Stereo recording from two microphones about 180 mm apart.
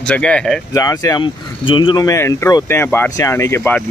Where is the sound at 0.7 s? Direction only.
20° left (ahead or behind).